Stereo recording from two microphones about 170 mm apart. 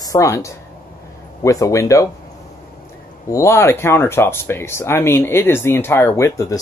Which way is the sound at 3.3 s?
15° left (ahead or behind).